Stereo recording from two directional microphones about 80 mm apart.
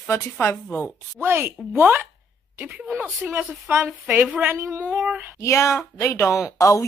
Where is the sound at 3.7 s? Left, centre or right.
Right.